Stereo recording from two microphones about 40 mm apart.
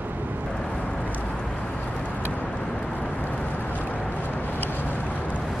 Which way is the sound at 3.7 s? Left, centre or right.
Left.